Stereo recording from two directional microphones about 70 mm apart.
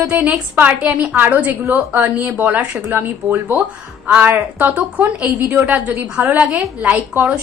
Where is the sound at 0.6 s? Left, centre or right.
Right.